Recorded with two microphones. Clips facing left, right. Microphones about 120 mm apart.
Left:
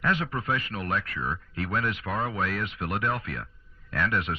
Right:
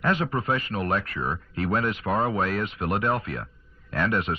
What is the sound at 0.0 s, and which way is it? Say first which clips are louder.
Speech: right 3 dB; 30° right (ahead or behind).